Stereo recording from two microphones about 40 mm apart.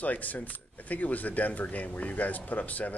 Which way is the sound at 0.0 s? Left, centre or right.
Left.